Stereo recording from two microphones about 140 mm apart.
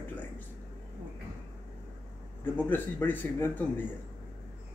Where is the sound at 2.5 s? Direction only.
15° left (ahead or behind).